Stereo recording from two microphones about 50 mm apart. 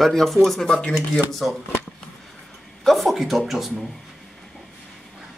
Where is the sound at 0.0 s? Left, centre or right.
Centre.